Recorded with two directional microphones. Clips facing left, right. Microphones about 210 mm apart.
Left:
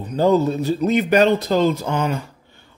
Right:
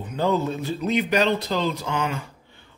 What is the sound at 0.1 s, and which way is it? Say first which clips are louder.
Speech: left 7 dB; 40° left (ahead or behind).